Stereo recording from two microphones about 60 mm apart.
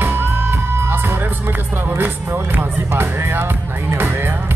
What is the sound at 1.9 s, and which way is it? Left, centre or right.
Speech, right.